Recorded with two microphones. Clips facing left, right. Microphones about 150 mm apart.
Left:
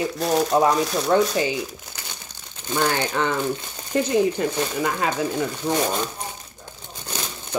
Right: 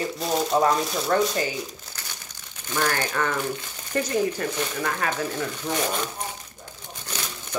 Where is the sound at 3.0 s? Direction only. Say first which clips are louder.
Left 3 dB; 25° left (ahead or behind).